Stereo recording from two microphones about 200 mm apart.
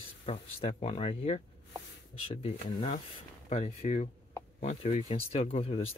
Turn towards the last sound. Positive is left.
turn(degrees=30)  # may be behind; listen again after turning